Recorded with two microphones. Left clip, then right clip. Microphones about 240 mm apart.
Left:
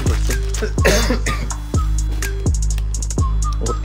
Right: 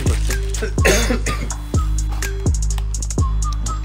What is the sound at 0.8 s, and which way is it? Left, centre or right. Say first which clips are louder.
Cough: even; left.